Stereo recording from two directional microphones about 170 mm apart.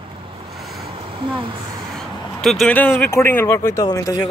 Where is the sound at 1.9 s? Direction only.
Centre (ahead or behind).